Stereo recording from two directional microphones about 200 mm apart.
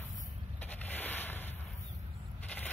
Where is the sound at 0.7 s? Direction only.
10° left (ahead or behind).